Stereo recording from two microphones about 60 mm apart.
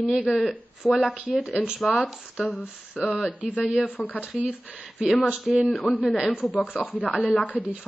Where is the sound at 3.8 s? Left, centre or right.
Left.